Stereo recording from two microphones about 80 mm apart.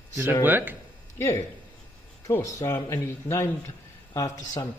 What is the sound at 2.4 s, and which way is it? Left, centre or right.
A man's voice, left.